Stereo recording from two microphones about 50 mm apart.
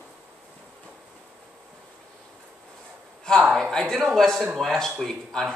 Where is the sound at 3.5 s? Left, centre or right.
Centre.